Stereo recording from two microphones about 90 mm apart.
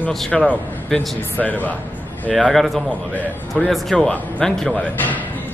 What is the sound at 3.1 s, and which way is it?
Speech, 20° right (ahead or behind).